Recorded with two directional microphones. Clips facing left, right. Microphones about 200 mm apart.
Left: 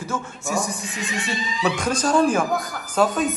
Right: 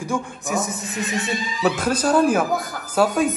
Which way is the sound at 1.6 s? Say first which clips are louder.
Right 2 dB; 5° right (ahead or behind).